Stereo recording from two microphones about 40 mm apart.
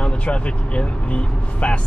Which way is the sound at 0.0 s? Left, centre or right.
Left.